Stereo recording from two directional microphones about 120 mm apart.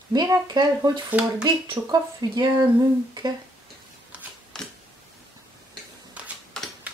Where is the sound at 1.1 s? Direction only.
10° right (ahead or behind).